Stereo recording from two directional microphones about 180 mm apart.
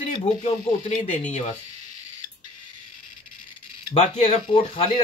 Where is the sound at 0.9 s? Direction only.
40° left (ahead or behind).